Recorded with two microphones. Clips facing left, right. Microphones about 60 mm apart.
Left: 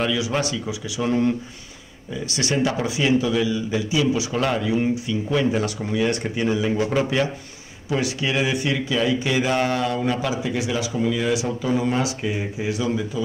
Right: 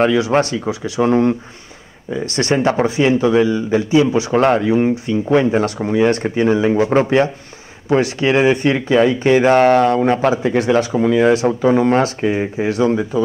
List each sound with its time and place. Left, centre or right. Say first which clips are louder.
0.0 s speech: right 9 dB; right